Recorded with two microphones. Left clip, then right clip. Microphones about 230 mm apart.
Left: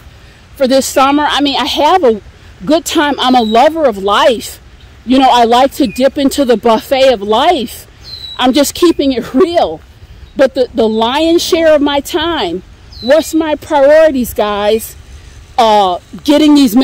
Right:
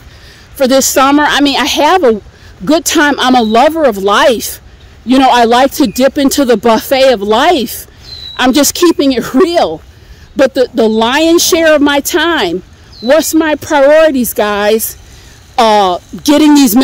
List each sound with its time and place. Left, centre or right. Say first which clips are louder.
0.6 s speech: right 1 dB; right